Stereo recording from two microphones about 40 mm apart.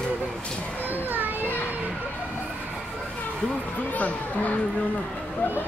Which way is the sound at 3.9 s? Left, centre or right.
Left.